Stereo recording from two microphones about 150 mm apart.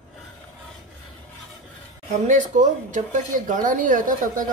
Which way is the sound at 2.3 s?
55° right (ahead or behind).